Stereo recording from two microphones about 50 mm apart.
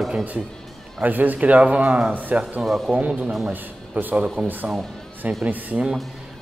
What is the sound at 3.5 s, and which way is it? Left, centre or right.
Speech, right.